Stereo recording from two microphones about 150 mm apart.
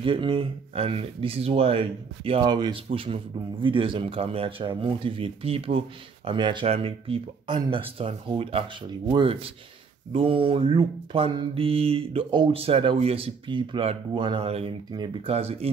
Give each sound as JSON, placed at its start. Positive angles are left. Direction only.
{"t": 0.0, "sound": "mantra", "side_deg": -35}
{"t": 15.2, "sound": "speech", "side_deg": -40}